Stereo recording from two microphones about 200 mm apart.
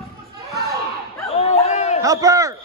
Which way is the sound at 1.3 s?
35° left (ahead or behind).